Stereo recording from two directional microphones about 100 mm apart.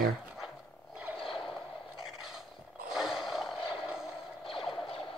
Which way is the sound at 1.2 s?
60° left (ahead or behind).